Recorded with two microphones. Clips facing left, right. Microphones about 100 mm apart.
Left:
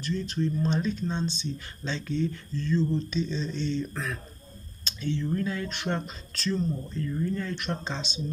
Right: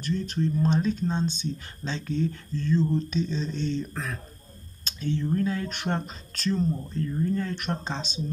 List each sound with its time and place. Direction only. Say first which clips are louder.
0.0 s speech: right 1 dB; 50° right (ahead or behind)
6.5 s speech: right 2 dB; 35° right (ahead or behind)